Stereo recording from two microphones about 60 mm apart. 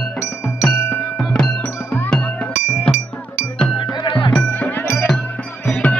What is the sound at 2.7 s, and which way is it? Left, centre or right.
Music, left.